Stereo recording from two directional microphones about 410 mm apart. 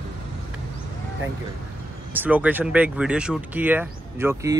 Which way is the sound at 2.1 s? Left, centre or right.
Centre.